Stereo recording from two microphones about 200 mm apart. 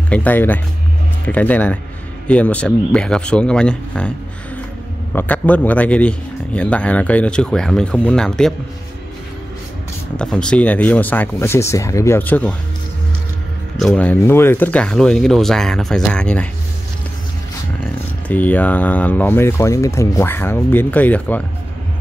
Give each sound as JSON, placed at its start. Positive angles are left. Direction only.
{"t": 0.1, "sound": "a man's voice", "side_deg": 10}
{"t": 5.1, "sound": "a man's voice", "side_deg": 10}
{"t": 10.1, "sound": "a man's voice", "side_deg": 5}
{"t": 13.7, "sound": "speech", "side_deg": 5}
{"t": 18.3, "sound": "a man's voice", "side_deg": 10}